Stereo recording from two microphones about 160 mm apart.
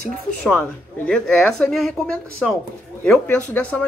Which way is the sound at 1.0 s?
5° left (ahead or behind).